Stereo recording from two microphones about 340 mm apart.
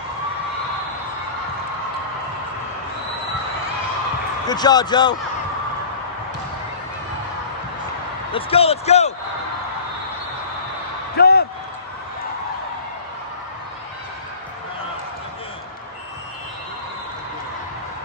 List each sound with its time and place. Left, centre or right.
4.5 s speech: centre
8.3 s speech: centre
11.1 s a sound: left